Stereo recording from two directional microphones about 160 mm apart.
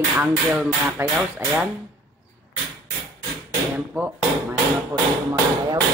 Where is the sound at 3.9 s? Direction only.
10° right (ahead or behind).